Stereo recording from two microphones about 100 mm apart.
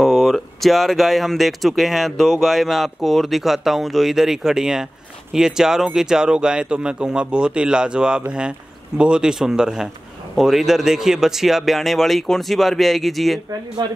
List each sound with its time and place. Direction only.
0.0 s speech: centre (ahead or behind)
13.8 s a man's voice: 50° right (ahead or behind)